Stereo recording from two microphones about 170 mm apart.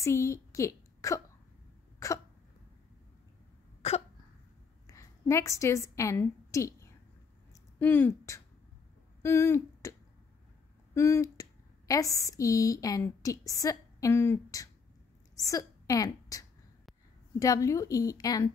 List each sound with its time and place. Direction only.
0.0 s a woman's voice: 15° left (ahead or behind)
4.8 s a woman's voice: 20° left (ahead or behind)
11.0 s a woman's voice: 20° left (ahead or behind)